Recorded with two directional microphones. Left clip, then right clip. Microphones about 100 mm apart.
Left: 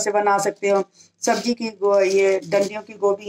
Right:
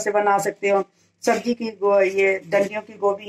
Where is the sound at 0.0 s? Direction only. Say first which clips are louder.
Even; 30° right (ahead or behind).